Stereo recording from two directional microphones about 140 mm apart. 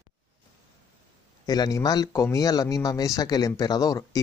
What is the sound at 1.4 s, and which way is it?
Speech, 30° left (ahead or behind).